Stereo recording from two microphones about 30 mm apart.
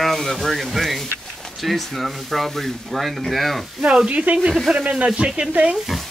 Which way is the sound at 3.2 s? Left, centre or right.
Centre.